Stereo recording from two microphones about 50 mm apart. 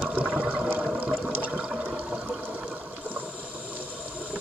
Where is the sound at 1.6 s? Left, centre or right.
Centre.